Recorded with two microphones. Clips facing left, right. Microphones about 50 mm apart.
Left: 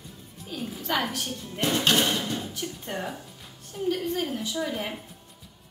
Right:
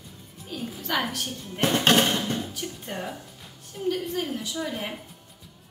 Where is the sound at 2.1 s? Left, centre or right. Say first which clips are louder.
Right 2 dB; right.